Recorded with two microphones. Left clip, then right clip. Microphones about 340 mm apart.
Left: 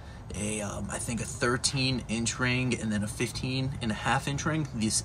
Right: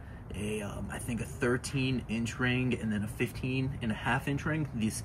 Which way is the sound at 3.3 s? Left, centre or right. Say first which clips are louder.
Left 2 dB; left.